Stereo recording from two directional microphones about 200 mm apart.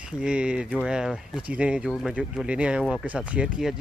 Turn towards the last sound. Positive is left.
turn(degrees=-5)  # may be behind; listen again after turning